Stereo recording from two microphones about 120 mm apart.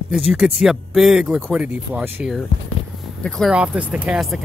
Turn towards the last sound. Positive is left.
turn(degrees=-5)  # may be behind; listen again after turning